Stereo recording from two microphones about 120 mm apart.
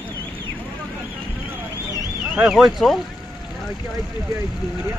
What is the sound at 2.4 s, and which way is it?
Speech, 5° right (ahead or behind).